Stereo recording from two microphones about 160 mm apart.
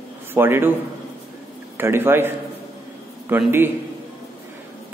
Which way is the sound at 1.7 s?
15° right (ahead or behind).